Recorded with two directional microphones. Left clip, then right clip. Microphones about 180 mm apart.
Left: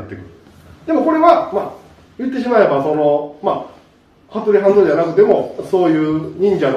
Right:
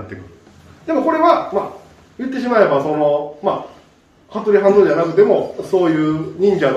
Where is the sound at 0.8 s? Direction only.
20° right (ahead or behind).